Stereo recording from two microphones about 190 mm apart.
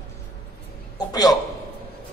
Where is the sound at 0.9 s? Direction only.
20° left (ahead or behind).